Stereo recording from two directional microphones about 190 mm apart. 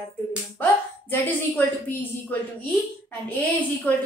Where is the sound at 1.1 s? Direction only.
10° left (ahead or behind).